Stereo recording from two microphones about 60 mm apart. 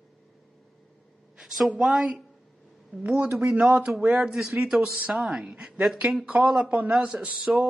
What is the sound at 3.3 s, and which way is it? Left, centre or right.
A man's voice, centre.